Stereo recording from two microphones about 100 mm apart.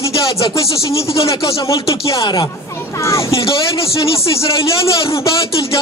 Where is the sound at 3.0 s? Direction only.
30° left (ahead or behind).